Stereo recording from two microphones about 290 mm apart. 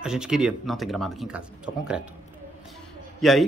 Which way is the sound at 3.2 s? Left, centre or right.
Centre.